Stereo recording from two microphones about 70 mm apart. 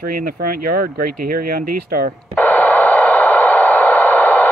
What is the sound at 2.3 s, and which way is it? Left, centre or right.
Radio, left.